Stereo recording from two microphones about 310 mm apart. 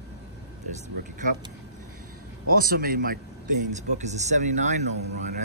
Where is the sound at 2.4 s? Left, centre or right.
Right.